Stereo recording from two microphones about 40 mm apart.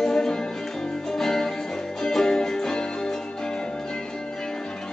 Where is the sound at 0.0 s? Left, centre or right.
Centre.